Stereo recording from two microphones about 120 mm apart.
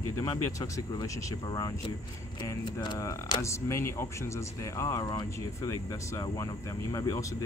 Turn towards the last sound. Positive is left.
turn(degrees=30)  # may be behind; listen again after turning